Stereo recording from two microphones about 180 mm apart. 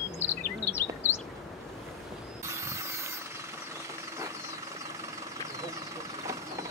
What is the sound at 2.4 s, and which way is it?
Vehicle, 15° right (ahead or behind).